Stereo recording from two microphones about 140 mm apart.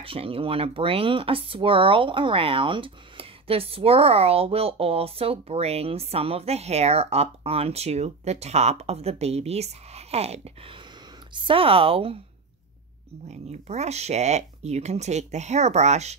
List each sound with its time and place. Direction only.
0.0 s speech: 40° right (ahead or behind)
13.3 s speech: 50° right (ahead or behind)